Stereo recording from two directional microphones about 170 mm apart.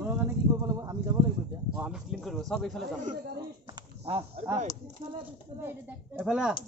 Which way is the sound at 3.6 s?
30° right (ahead or behind).